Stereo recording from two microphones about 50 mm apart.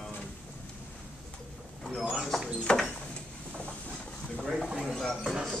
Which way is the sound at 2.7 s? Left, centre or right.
Centre.